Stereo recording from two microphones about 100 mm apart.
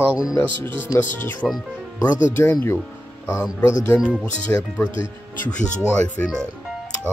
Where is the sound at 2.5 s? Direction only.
25° left (ahead or behind).